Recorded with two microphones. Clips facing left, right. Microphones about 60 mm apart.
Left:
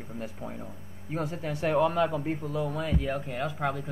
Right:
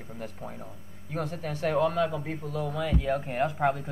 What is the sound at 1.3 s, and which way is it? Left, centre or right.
Speech, left.